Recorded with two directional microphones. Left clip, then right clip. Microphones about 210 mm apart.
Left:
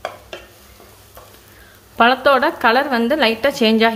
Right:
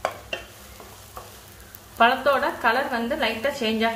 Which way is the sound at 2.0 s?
50° left (ahead or behind).